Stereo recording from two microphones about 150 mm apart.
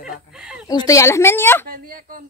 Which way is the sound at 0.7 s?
25° left (ahead or behind).